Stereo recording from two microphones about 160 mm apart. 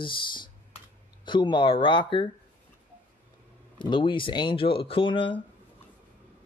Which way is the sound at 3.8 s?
30° left (ahead or behind).